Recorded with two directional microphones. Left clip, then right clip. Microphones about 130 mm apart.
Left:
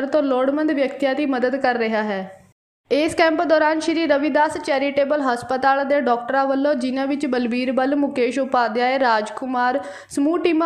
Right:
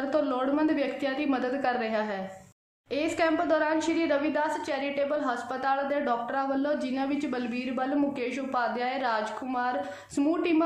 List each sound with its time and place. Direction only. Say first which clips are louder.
0.1 s a woman's voice: left 9 dB; 35° left (ahead or behind)